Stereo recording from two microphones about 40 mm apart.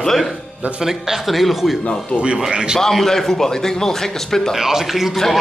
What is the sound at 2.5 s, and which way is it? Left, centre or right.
Speech, right.